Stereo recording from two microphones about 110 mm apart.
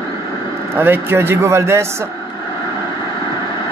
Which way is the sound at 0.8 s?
20° right (ahead or behind).